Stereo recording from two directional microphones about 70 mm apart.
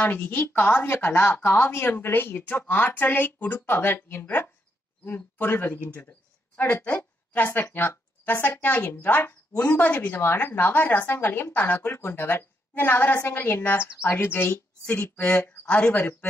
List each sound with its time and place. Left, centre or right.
0.0 s speech: left
15.6 s speech: centre
15.9 s speech: left